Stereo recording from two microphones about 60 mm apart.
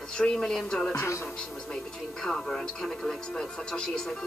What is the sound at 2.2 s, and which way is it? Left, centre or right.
Speech, centre.